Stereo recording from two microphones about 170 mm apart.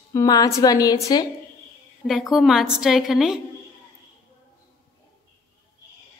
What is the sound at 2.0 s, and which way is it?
A woman's voice, centre (ahead or behind).